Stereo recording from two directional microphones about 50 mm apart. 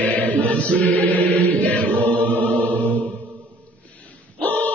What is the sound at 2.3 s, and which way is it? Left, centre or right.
Music, left.